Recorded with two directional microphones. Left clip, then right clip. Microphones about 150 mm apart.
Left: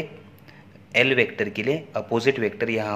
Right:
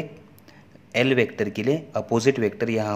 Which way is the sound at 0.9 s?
40° right (ahead or behind).